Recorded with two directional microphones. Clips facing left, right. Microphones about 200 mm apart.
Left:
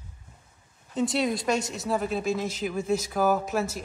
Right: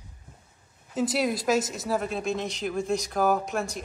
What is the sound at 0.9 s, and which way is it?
Speech, centre (ahead or behind).